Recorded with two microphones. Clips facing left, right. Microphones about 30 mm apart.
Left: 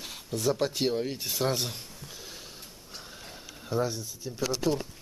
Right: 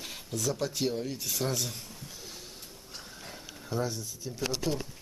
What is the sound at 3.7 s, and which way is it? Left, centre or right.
Speech, centre.